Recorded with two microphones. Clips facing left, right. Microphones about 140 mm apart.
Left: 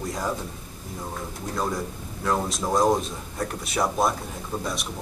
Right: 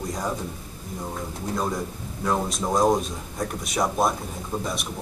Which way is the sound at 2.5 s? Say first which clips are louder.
Right 1 dB; centre (ahead or behind).